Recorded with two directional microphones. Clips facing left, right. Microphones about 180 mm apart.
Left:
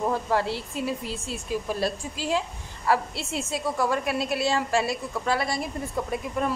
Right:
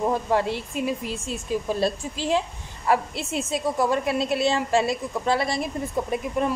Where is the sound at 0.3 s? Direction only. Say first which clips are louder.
Right 2 dB; 20° right (ahead or behind).